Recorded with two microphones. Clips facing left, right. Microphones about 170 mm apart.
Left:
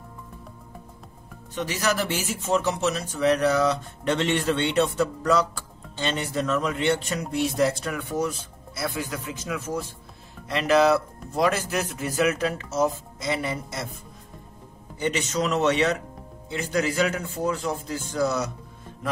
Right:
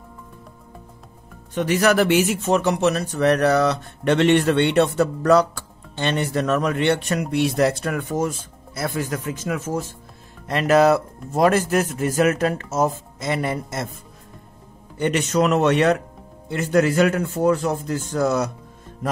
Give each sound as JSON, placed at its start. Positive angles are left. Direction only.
{"t": 1.5, "sound": "speech", "side_deg": -55}
{"t": 15.0, "sound": "speech", "side_deg": -55}